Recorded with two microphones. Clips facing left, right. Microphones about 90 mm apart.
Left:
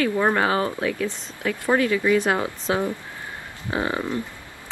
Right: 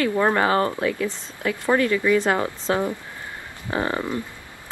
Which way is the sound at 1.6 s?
15° left (ahead or behind).